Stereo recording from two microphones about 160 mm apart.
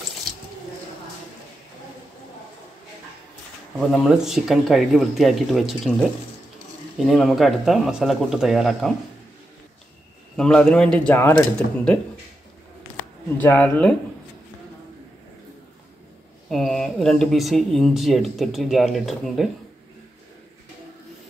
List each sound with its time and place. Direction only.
3.7 s speech: centre (ahead or behind)
7.1 s speech: centre (ahead or behind)
10.3 s speech: 5° left (ahead or behind)
13.4 s speech: 10° left (ahead or behind)
16.4 s speech: centre (ahead or behind)